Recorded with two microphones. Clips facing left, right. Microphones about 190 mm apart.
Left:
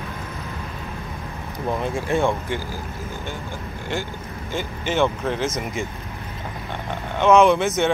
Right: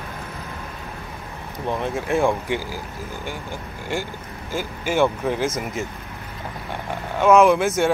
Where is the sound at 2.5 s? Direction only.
15° right (ahead or behind).